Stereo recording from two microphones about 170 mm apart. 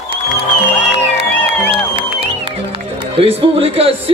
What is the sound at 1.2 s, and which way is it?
Music, 35° right (ahead or behind).